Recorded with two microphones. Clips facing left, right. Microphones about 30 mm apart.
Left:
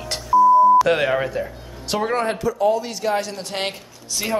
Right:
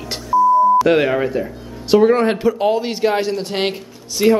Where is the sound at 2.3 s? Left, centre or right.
Right.